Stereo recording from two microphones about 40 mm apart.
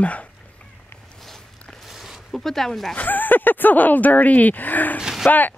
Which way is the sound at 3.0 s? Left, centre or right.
Left.